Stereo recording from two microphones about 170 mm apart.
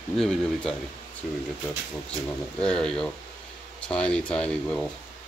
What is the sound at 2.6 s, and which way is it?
Speech, 5° left (ahead or behind).